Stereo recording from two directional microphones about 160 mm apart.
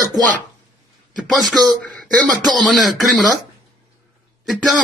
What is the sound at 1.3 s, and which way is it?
Speech, centre (ahead or behind).